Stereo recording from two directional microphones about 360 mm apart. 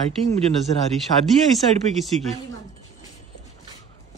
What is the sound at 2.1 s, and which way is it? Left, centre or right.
Speech, centre.